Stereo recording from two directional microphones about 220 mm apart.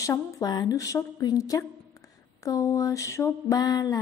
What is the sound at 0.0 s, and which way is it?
A woman's voice, 15° left (ahead or behind).